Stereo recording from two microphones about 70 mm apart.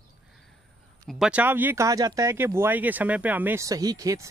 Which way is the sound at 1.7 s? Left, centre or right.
Right.